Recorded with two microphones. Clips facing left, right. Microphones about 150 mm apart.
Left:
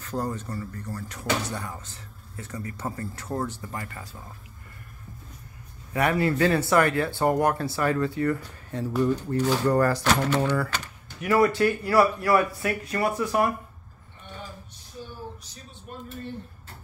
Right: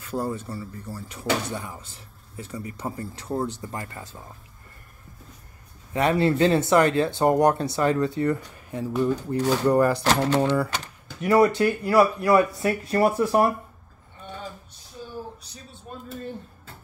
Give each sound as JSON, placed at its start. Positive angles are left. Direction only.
{"t": 0.1, "sound": "speech", "side_deg": -10}
{"t": 5.9, "sound": "speech", "side_deg": -25}